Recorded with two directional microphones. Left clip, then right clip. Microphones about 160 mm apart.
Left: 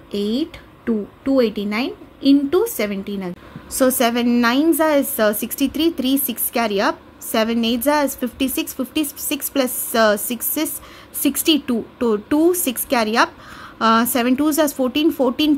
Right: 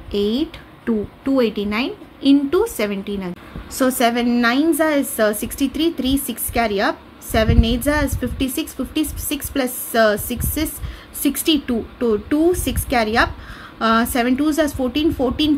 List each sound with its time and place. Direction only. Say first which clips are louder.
0.1 s speech: right 2 dB; 20° left (ahead or behind)
3.7 s a woman's voice: even; 30° left (ahead or behind)